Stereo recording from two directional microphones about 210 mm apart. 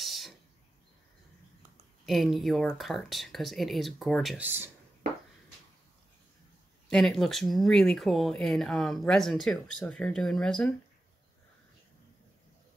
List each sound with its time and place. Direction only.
0.0 s a sound: centre (ahead or behind)
2.0 s speech: centre (ahead or behind)
6.9 s speech: centre (ahead or behind)